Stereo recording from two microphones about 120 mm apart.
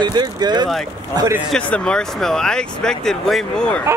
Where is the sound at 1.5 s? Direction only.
5° left (ahead or behind).